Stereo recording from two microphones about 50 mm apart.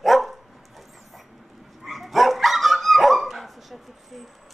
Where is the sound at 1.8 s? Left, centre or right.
Centre.